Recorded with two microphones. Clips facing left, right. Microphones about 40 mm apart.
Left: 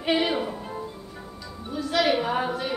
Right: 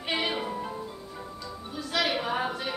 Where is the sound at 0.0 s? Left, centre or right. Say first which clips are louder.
Left 6 dB; centre.